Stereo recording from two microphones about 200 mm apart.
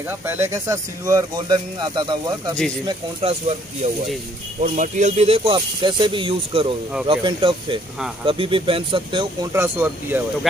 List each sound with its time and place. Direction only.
0.3 s speech: 15° right (ahead or behind)
3.2 s speech: 30° right (ahead or behind)
9.5 s speech: 10° right (ahead or behind)